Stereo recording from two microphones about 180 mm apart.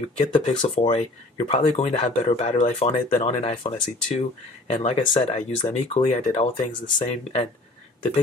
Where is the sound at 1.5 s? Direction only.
35° left (ahead or behind).